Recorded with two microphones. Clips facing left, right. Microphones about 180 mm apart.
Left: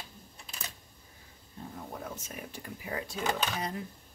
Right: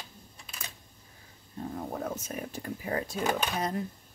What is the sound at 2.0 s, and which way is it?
Speech, 45° right (ahead or behind).